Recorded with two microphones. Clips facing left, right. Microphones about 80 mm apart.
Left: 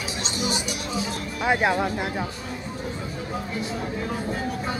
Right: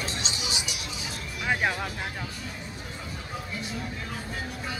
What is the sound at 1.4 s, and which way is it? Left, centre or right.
Music, centre.